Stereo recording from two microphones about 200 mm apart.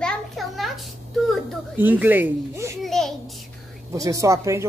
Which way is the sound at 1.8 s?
10° right (ahead or behind).